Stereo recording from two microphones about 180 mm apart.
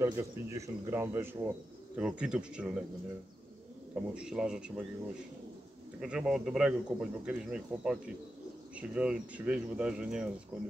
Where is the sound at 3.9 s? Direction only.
5° right (ahead or behind).